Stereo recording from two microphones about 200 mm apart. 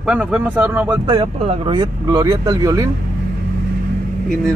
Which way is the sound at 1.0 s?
25° right (ahead or behind).